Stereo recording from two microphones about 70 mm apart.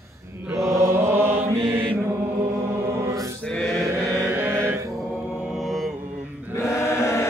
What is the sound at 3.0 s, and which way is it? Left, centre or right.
Choir, right.